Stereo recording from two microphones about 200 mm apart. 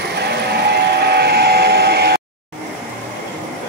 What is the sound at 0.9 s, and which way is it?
Vehicle, 55° right (ahead or behind).